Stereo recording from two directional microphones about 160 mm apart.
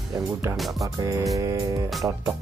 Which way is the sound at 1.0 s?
20° right (ahead or behind).